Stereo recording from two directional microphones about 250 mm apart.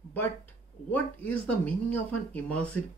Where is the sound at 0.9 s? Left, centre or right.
Centre.